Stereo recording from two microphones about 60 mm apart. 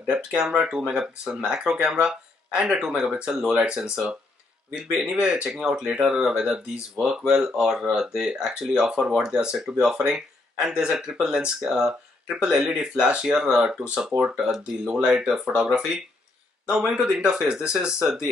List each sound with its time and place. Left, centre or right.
0.0 s speech: centre